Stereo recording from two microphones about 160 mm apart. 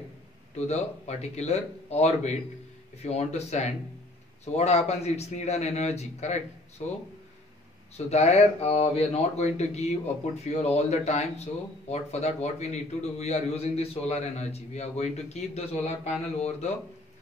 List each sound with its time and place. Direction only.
0.6 s speech: 45° left (ahead or behind)
8.1 s speech: 45° left (ahead or behind)